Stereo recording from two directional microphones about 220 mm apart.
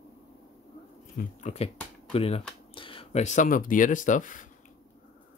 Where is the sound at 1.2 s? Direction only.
35° left (ahead or behind).